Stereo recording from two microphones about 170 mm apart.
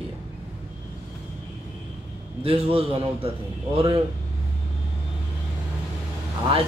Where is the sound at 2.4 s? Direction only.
35° right (ahead or behind).